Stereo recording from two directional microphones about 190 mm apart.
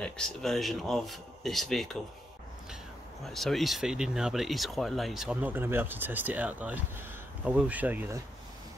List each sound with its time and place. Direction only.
0.0 s speech: centre (ahead or behind)
3.3 s speech: centre (ahead or behind)